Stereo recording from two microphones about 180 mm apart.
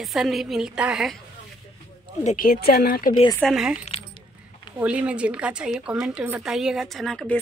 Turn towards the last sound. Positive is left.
turn(degrees=5)  # may be behind; listen again after turning